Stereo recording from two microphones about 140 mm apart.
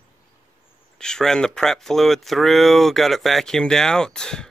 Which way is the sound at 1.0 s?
5° left (ahead or behind).